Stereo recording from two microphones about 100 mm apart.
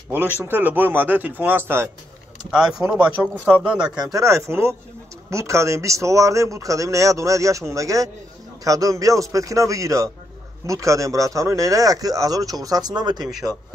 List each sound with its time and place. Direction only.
0.1 s speech: 20° right (ahead or behind)
3.6 s speech: 10° right (ahead or behind)
3.9 s speech: 45° right (ahead or behind)
4.2 s speech: 30° right (ahead or behind); by 13.3 s 45° right (ahead or behind)